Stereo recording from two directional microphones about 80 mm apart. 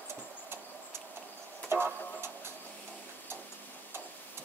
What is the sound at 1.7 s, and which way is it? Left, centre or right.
Music, right.